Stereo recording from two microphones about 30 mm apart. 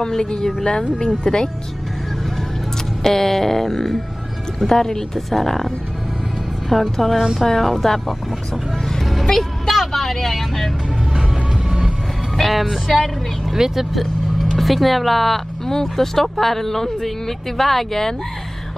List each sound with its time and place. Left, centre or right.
0.0 s speech: left
3.0 s speech: centre
6.8 s speech: centre
9.0 s vehicle: centre
12.4 s speech: centre
13.9 s vehicle: centre
15.7 s speech: centre